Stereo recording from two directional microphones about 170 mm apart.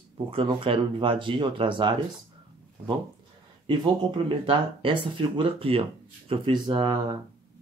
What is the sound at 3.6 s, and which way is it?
Speech, 30° right (ahead or behind).